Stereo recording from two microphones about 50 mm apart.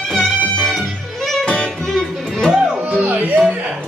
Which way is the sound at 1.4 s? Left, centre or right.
Centre.